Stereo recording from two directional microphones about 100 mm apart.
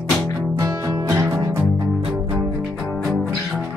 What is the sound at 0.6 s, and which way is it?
Music, 35° right (ahead or behind).